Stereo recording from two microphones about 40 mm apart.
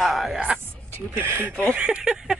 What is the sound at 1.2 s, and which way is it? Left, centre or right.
Speech, right.